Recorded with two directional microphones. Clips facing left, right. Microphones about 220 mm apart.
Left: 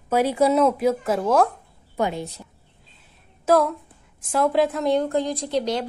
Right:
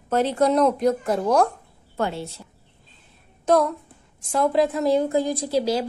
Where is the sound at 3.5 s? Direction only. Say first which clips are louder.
Even; 5° left (ahead or behind).